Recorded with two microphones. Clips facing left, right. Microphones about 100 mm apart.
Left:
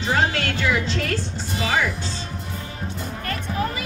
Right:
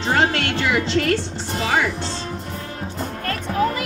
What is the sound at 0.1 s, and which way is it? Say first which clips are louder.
A woman's voice: right 2 dB; 65° right (ahead or behind).